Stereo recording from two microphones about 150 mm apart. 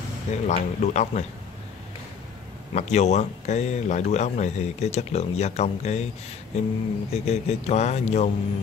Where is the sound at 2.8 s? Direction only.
50° left (ahead or behind).